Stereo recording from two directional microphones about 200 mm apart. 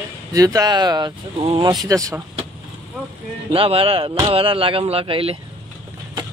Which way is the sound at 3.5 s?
30° right (ahead or behind).